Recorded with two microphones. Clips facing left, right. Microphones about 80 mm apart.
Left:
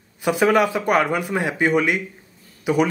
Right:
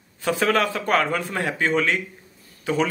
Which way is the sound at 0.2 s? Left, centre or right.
Centre.